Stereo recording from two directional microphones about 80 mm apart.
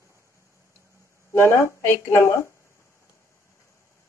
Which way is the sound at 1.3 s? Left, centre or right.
Left.